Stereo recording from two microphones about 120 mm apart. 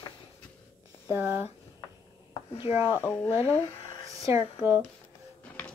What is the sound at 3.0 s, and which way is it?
Speech, 20° left (ahead or behind).